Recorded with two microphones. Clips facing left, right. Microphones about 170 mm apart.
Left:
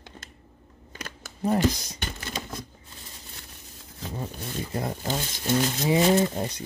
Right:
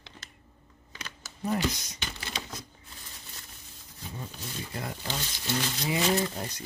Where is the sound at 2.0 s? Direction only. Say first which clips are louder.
Left 4 dB; 45° left (ahead or behind).